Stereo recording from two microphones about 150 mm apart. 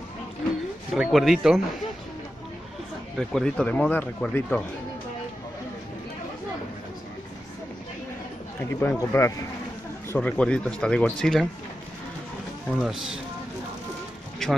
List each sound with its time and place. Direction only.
0.9 s speech: centre (ahead or behind)
3.2 s speech: 5° left (ahead or behind)
8.5 s speech: 15° left (ahead or behind)
12.6 s speech: 5° right (ahead or behind)